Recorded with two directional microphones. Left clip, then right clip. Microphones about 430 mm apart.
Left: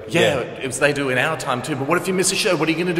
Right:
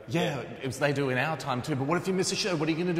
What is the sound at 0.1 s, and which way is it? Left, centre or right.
A man's voice, centre.